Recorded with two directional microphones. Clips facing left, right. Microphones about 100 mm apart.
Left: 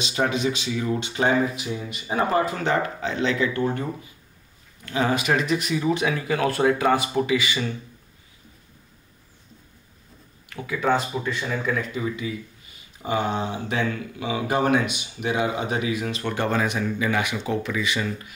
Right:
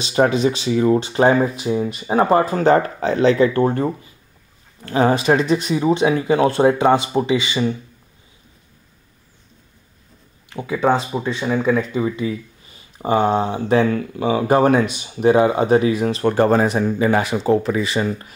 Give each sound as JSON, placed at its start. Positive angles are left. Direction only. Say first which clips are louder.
{"t": 0.0, "sound": "speech", "louder": "right 7 dB", "side_deg": -40}
{"t": 10.5, "sound": "speech", "louder": "right 5 dB", "side_deg": -25}